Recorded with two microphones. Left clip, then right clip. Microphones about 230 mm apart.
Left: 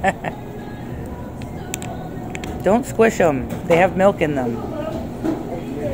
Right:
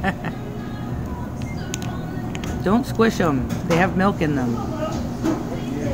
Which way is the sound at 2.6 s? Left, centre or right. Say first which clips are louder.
Left 4 dB; right.